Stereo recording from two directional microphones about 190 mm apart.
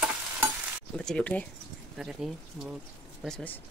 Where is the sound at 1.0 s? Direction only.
5° left (ahead or behind).